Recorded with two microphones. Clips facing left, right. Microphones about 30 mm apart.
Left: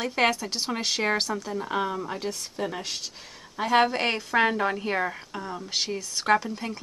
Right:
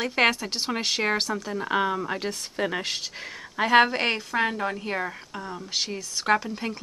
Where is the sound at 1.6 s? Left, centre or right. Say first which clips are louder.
Right 5 dB; right.